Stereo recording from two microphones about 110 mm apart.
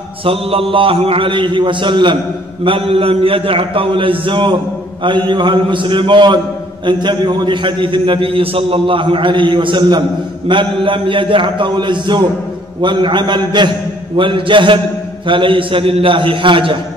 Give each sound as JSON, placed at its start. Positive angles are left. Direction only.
{"t": 0.2, "sound": "a man's voice", "side_deg": -55}